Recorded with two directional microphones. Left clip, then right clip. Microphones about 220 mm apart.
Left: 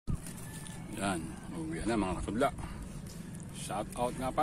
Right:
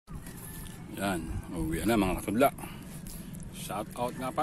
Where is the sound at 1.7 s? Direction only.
45° right (ahead or behind).